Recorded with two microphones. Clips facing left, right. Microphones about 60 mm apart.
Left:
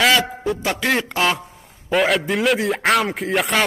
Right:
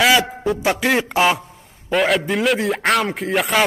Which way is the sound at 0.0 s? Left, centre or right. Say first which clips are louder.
Right 1 dB; centre.